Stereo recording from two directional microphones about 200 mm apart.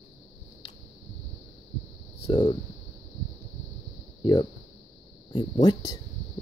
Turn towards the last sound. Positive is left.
turn(degrees=20)  # may be behind; listen again after turning